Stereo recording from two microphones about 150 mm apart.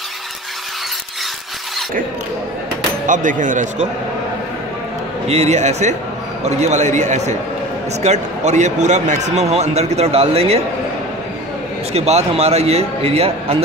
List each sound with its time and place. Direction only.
3.1 s speech: 60° right (ahead or behind)
5.3 s a man's voice: 45° right (ahead or behind)
11.9 s a man's voice: 45° right (ahead or behind)